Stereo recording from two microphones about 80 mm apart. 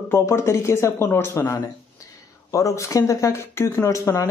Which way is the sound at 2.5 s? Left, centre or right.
Left.